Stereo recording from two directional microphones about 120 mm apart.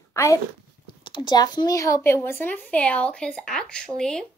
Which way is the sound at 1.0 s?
40° left (ahead or behind).